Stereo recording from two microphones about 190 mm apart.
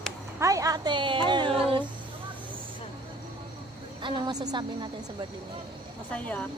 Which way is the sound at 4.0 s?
25° right (ahead or behind).